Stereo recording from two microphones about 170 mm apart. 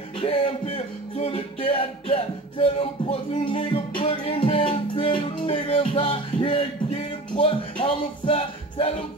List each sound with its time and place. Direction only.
0.2 s music: 35° left (ahead or behind)